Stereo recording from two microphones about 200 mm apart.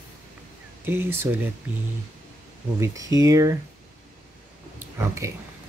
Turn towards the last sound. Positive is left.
turn(degrees=-15)  # may be behind; listen again after turning